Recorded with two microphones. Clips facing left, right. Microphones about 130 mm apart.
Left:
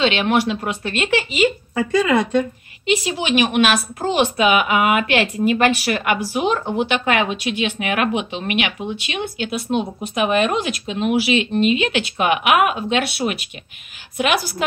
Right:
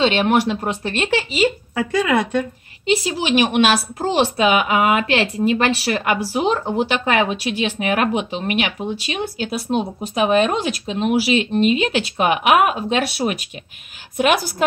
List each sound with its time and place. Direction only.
0.0 s speech: 40° right (ahead or behind)
1.8 s speech: 5° right (ahead or behind)
2.8 s a woman's voice: 35° right (ahead or behind)